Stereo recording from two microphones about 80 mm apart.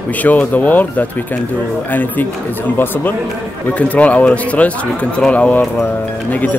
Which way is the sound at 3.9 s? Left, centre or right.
Centre.